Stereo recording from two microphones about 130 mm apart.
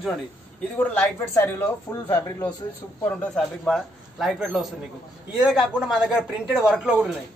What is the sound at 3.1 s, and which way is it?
A man's voice, 5° left (ahead or behind).